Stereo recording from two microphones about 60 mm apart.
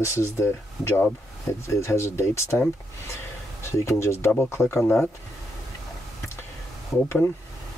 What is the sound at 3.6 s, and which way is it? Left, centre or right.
Speech, left.